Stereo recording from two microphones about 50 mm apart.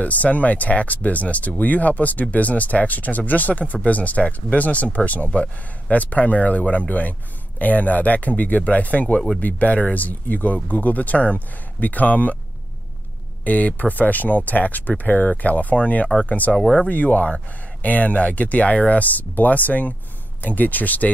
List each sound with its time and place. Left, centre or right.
0.0 s speech: left
13.4 s speech: left